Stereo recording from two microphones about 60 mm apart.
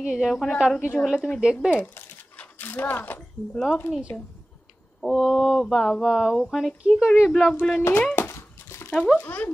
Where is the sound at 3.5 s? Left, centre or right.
Centre.